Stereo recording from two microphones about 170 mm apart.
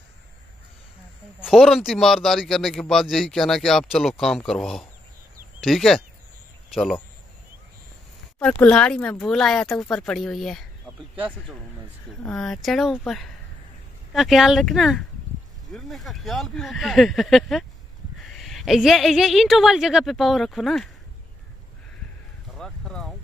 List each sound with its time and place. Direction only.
1.4 s a man's voice: centre (ahead or behind)
8.4 s a man's voice: 5° left (ahead or behind)
12.2 s a man's voice: 5° left (ahead or behind)
22.6 s a sound: 5° left (ahead or behind)